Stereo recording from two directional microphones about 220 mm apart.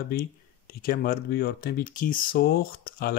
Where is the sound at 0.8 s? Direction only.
45° left (ahead or behind).